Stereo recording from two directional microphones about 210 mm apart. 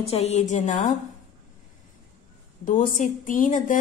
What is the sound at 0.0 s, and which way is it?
Speech, 30° left (ahead or behind).